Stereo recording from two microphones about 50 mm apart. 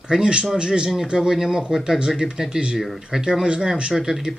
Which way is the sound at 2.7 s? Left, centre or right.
Centre.